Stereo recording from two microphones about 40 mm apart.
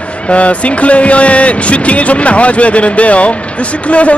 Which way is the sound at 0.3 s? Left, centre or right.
Left.